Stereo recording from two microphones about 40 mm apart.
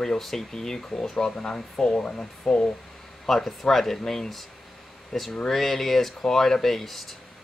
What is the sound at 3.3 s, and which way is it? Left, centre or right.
Speech, centre.